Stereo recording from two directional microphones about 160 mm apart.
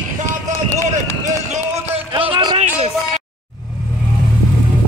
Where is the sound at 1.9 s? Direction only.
35° right (ahead or behind).